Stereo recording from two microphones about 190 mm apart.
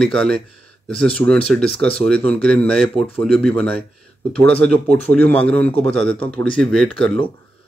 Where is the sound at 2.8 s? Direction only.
30° left (ahead or behind).